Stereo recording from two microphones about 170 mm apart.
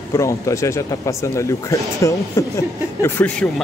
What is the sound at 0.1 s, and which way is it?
Speech, 20° left (ahead or behind).